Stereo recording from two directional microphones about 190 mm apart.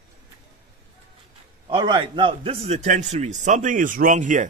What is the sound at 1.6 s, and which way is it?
A man's voice, 25° right (ahead or behind).